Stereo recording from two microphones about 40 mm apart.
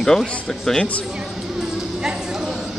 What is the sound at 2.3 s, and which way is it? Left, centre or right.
Chatter, centre.